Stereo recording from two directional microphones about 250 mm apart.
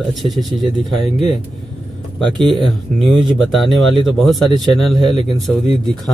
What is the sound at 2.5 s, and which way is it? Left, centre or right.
Speech, centre.